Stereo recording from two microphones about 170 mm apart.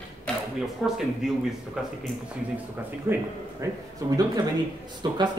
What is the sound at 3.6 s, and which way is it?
Speech, 15° right (ahead or behind).